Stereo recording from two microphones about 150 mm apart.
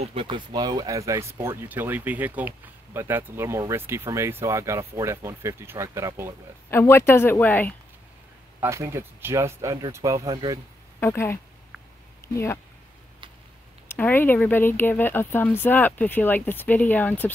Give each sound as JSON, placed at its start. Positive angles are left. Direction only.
{"t": 0.0, "sound": "speech", "side_deg": -40}
{"t": 6.7, "sound": "speech", "side_deg": 15}
{"t": 8.5, "sound": "speech", "side_deg": -20}
{"t": 11.0, "sound": "speech", "side_deg": 15}
{"t": 13.8, "sound": "speech", "side_deg": 15}